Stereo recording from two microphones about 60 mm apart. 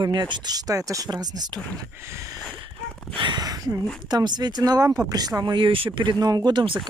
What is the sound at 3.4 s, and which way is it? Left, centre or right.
Speech, right.